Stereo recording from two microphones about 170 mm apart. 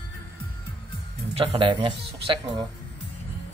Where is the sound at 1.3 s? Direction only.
30° right (ahead or behind).